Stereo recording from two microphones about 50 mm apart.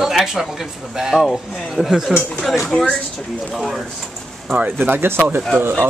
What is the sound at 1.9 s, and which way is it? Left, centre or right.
Speech, centre.